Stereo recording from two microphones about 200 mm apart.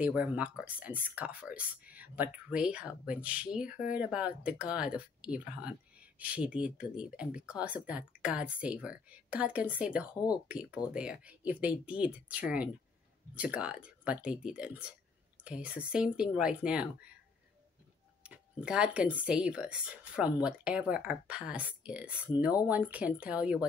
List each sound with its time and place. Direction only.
0.0 s speech: 5° right (ahead or behind)
18.2 s speech: 5° right (ahead or behind)